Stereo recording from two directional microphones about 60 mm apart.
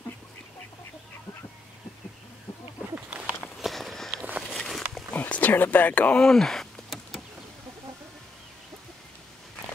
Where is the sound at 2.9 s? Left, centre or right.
Right.